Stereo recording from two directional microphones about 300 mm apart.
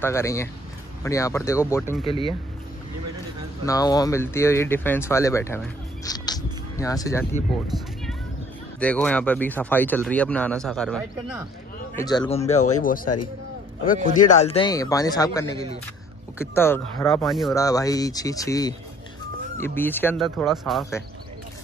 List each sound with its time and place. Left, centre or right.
0.0 s speech: centre
3.6 s speech: centre
6.0 s music: centre
8.7 s speech: centre
11.9 s speech: centre
17.6 s speech: centre